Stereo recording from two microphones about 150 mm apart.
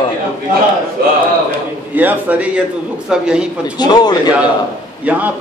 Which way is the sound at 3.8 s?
25° left (ahead or behind).